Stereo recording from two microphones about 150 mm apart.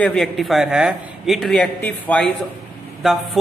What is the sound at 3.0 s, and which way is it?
Speech, centre (ahead or behind).